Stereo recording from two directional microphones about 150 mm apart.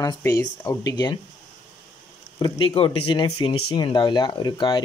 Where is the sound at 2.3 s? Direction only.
30° left (ahead or behind).